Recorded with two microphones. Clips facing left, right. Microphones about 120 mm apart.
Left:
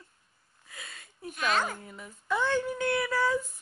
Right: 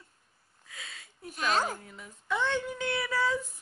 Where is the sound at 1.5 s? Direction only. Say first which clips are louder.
Right 1 dB; 40° right (ahead or behind).